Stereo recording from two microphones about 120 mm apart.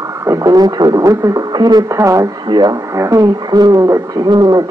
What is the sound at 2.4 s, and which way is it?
Speech, 40° right (ahead or behind).